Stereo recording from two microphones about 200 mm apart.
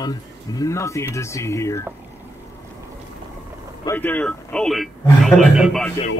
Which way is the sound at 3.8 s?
10° left (ahead or behind).